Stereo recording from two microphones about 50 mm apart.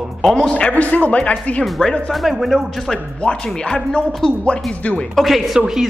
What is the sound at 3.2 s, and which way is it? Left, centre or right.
Speech, centre.